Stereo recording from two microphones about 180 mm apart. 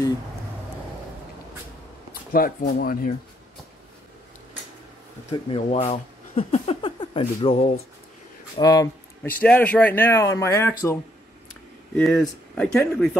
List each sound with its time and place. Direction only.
2.3 s speech: 55° left (ahead or behind)
5.3 s speech: 35° left (ahead or behind)
8.5 s speech: 20° left (ahead or behind)
9.4 s speech: 5° left (ahead or behind)
12.0 s speech: 5° left (ahead or behind)